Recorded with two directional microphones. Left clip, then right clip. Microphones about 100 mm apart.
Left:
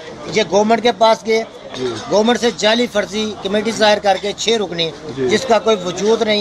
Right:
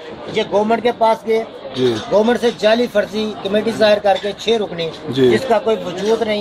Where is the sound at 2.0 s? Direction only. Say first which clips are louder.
Left 2 dB; 5° right (ahead or behind).